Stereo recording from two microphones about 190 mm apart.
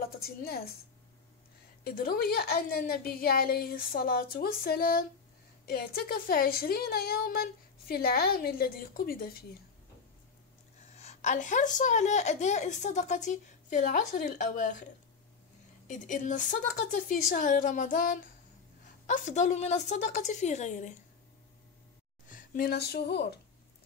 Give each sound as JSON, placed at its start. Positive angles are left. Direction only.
{"t": 0.0, "sound": "a woman's voice", "side_deg": 50}
{"t": 1.9, "sound": "a woman's voice", "side_deg": 50}
{"t": 10.9, "sound": "a woman's voice", "side_deg": 35}
{"t": 15.9, "sound": "a woman's voice", "side_deg": 40}
{"t": 22.3, "sound": "speech", "side_deg": 45}